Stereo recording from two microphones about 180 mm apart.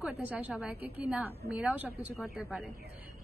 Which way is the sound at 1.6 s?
10° right (ahead or behind).